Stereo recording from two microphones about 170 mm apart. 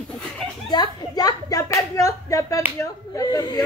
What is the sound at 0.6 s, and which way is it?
Speech, 25° left (ahead or behind).